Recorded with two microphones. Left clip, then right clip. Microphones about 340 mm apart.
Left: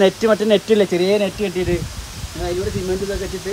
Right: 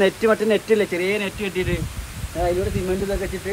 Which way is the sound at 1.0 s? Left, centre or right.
Centre.